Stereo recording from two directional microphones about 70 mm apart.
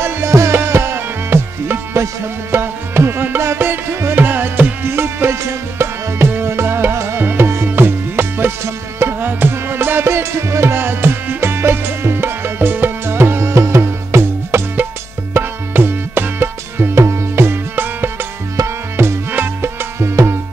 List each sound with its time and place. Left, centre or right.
0.0 s music: right
7.2 s tabla: right
9.2 s music: right
15.3 s tabla: right
19.0 s music: right